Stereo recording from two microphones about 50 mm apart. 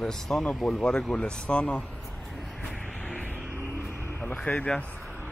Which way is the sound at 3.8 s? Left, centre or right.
Left.